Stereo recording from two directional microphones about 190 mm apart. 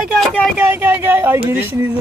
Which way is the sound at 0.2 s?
5° left (ahead or behind).